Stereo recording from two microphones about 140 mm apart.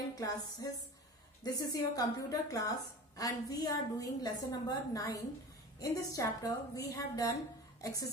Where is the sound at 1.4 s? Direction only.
25° left (ahead or behind).